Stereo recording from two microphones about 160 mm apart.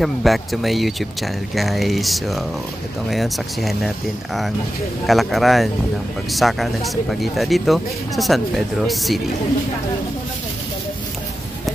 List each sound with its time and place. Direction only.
0.0 s speech: centre (ahead or behind)
5.0 s speech: centre (ahead or behind)